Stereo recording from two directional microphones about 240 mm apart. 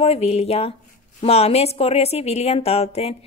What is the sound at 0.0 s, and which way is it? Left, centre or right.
A woman's voice, left.